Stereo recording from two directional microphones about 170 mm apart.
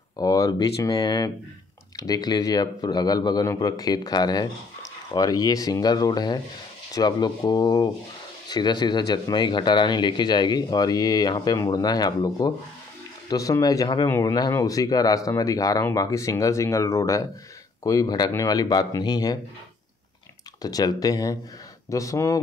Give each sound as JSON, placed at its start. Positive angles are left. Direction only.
{"t": 0.2, "sound": "speech", "side_deg": 20}
{"t": 20.6, "sound": "speech", "side_deg": 20}